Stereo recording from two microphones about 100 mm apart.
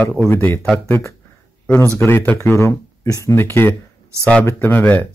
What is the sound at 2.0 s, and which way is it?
Speech, 25° left (ahead or behind).